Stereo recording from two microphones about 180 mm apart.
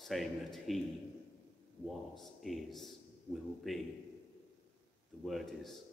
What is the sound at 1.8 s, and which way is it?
A man's voice, centre (ahead or behind).